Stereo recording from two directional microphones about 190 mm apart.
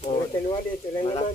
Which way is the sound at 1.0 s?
25° left (ahead or behind).